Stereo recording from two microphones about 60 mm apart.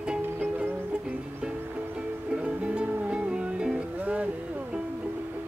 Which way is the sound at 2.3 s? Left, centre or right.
Centre.